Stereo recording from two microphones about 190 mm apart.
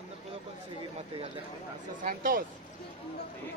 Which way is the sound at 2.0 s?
50° right (ahead or behind).